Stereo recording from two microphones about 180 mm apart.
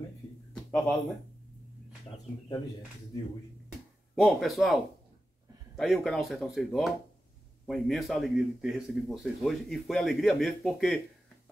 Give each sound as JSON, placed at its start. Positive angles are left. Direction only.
{"t": 0.5, "sound": "a sound", "side_deg": 5}
{"t": 4.1, "sound": "a man's voice", "side_deg": 0}
{"t": 5.8, "sound": "a man's voice", "side_deg": 0}